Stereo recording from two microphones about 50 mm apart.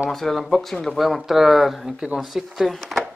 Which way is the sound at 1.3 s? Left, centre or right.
Centre.